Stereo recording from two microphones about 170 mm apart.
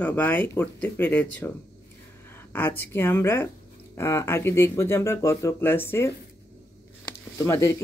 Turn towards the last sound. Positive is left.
turn(degrees=15)  # may be behind; listen again after turning